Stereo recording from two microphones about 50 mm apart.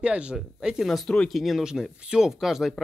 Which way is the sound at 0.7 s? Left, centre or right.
Centre.